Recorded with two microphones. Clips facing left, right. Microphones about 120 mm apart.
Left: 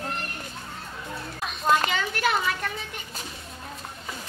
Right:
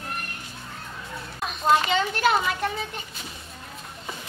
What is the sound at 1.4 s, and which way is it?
Children playing, centre (ahead or behind).